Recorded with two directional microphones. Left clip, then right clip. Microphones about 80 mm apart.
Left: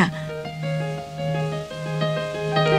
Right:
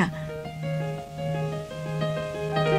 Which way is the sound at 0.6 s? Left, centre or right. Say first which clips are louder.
Left 3 dB; left.